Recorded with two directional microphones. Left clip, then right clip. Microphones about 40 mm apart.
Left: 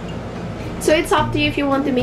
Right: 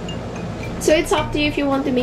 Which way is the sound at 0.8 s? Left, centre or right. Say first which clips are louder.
Left 1 dB; centre.